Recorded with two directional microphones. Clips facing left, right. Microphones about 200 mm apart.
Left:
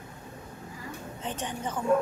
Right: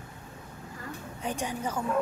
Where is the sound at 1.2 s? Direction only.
10° right (ahead or behind).